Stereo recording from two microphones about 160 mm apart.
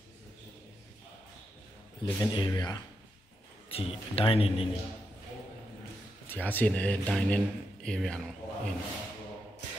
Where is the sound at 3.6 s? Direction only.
35° left (ahead or behind).